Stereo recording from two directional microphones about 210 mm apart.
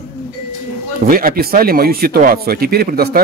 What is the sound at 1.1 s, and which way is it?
Speech, 45° right (ahead or behind).